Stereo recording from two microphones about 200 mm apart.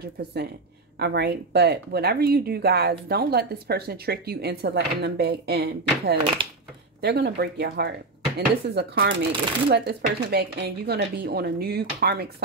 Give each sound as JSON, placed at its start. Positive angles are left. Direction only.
{"t": 0.0, "sound": "speech", "side_deg": -55}
{"t": 6.4, "sound": "speech", "side_deg": -25}
{"t": 7.0, "sound": "speech", "side_deg": -55}